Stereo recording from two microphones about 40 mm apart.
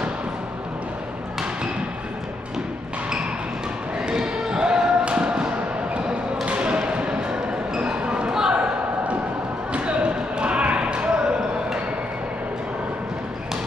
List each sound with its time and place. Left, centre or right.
4.0 s basketball bounce: centre
6.4 s thump: right
9.7 s basketball bounce: right